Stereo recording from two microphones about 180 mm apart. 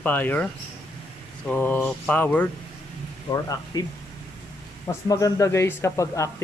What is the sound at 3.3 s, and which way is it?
Speech, 20° left (ahead or behind).